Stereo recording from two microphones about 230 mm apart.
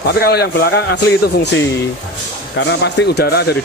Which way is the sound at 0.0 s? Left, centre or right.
Left.